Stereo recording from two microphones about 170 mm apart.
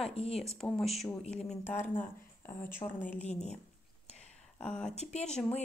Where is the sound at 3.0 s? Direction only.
40° left (ahead or behind).